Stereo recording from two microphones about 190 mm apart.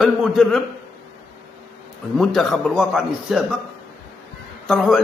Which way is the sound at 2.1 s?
Centre (ahead or behind).